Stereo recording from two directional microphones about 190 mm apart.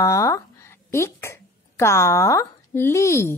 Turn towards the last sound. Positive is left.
turn(degrees=15)  # may be behind; listen again after turning